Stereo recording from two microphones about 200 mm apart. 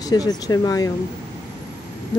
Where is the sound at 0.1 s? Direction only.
20° left (ahead or behind).